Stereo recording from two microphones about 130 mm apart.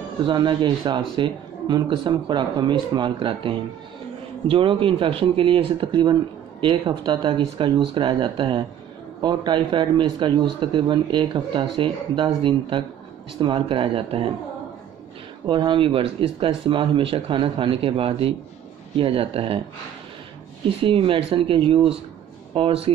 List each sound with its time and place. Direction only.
0.3 s speech: 35° right (ahead or behind)
15.4 s speech: 35° right (ahead or behind)
20.6 s speech: 45° right (ahead or behind)